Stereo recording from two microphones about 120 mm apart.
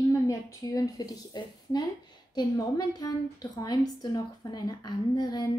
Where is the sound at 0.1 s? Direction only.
25° left (ahead or behind).